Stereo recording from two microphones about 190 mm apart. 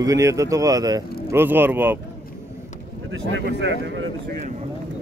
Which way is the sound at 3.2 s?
80° right.